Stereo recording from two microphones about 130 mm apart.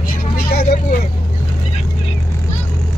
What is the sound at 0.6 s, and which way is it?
Vehicle, 70° left (ahead or behind).